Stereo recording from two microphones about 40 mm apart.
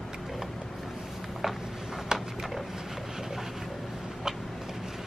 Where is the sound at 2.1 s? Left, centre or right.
Centre.